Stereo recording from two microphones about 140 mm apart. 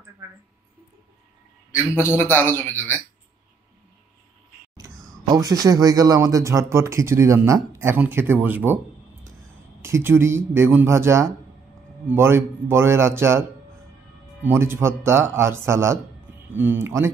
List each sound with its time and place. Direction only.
2.0 s speech: 15° left (ahead or behind)
4.7 s speech: 25° right (ahead or behind)
9.8 s speech: 20° right (ahead or behind)